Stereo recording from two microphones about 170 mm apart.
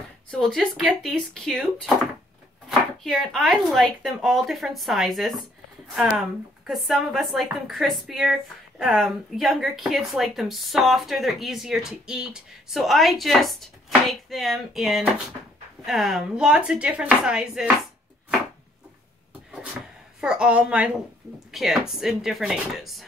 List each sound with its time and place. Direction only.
0.3 s a woman's voice: 5° left (ahead or behind)
20.2 s a woman's voice: 5° right (ahead or behind)